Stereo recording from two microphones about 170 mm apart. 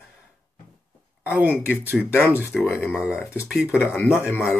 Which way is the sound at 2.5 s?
5° left (ahead or behind).